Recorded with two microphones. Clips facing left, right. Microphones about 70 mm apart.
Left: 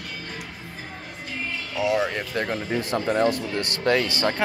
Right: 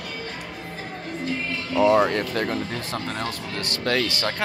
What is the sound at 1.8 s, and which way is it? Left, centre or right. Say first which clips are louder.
Speech: right 5 dB; centre.